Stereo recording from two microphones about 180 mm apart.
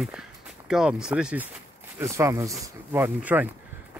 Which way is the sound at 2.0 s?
15° right (ahead or behind).